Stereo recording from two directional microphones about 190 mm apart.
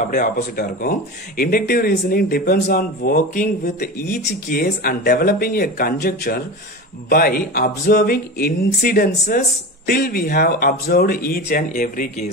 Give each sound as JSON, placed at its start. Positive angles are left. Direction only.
{"t": 0.1, "sound": "speech", "side_deg": 50}